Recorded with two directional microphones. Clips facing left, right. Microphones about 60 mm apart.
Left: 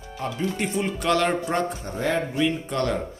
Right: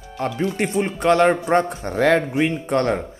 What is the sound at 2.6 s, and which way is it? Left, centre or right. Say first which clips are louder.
Speech: right 5 dB; right.